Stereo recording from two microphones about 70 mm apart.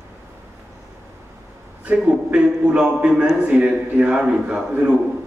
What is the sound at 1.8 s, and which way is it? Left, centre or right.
A man's voice, centre.